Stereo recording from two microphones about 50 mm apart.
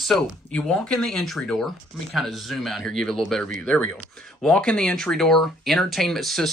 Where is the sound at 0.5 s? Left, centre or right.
Centre.